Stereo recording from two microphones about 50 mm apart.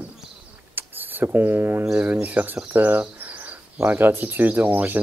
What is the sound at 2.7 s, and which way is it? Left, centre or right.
Cricket, right.